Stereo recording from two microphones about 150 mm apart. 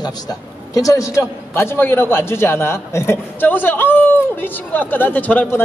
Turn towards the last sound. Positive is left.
turn(degrees=10)  # may be behind; listen again after turning